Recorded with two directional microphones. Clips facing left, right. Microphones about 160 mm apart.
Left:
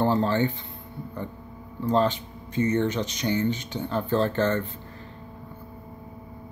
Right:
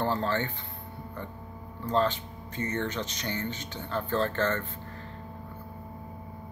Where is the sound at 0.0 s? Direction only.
15° left (ahead or behind).